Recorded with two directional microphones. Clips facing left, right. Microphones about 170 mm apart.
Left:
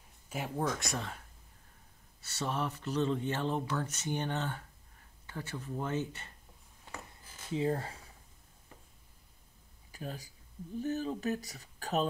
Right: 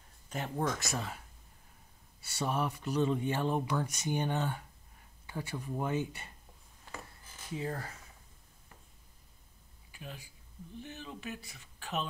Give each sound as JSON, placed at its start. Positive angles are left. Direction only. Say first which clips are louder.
{"t": 0.3, "sound": "speech", "louder": "even", "side_deg": 5}
{"t": 2.2, "sound": "speech", "louder": "right 2 dB", "side_deg": -10}
{"t": 7.5, "sound": "speech", "louder": "left 6 dB", "side_deg": 25}
{"t": 9.8, "sound": "speech", "louder": "left 5 dB", "side_deg": 40}